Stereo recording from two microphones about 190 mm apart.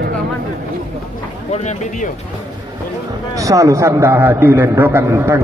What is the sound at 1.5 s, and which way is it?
Speech, 35° left (ahead or behind).